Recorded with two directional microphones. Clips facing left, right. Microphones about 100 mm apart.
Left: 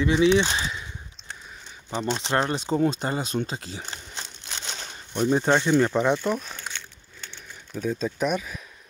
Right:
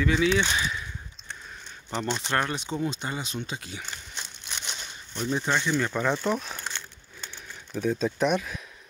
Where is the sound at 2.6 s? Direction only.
40° left (ahead or behind).